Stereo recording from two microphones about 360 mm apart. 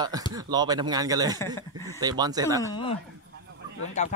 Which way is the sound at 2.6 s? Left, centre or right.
Centre.